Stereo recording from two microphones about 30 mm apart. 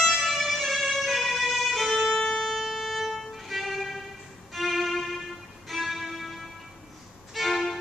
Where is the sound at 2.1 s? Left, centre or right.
Left.